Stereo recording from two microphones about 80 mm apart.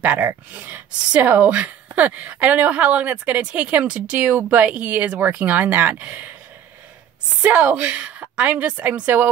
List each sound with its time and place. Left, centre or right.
0.0 s speech: right
7.7 s speech: centre